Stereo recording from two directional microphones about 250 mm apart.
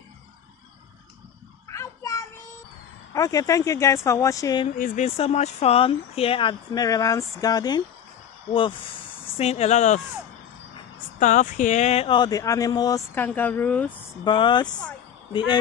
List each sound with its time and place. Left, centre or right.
1.7 s children playing: centre
3.1 s speech: centre
4.6 s speech: left; by 7.8 s centre
9.4 s speech: left
11.1 s speech: left; by 13.9 s centre
14.2 s speech: centre